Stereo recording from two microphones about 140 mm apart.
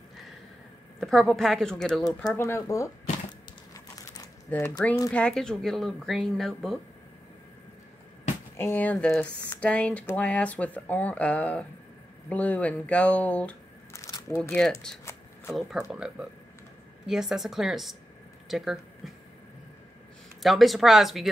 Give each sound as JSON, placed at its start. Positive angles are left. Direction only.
{"t": 0.9, "sound": "speech", "side_deg": 5}
{"t": 2.3, "sound": "speech", "side_deg": 20}
{"t": 3.7, "sound": "crumpling", "side_deg": 25}
{"t": 4.5, "sound": "speech", "side_deg": 15}
{"t": 8.5, "sound": "speech", "side_deg": 15}
{"t": 20.4, "sound": "speech", "side_deg": 0}